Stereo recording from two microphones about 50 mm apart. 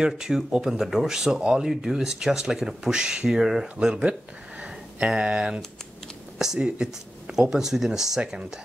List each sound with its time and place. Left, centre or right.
0.0 s speech: centre